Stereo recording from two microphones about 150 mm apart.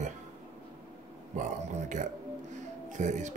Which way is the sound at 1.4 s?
55° right (ahead or behind).